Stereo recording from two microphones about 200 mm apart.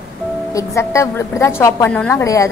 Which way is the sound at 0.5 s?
15° left (ahead or behind).